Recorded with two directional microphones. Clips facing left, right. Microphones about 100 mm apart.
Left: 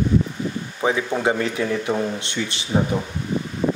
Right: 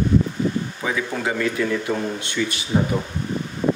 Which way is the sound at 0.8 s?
25° left (ahead or behind).